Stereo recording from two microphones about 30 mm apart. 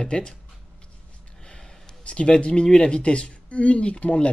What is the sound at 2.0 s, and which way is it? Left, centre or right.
Speech, left.